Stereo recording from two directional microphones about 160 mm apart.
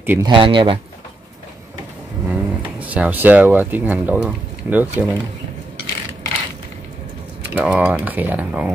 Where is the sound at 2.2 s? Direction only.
10° right (ahead or behind).